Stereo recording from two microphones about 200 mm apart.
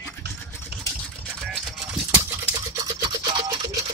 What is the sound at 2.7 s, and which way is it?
Toothbrush, 20° right (ahead or behind).